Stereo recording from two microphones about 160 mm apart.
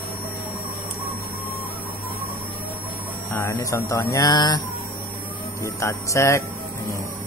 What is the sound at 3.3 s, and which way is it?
Speech, 20° left (ahead or behind).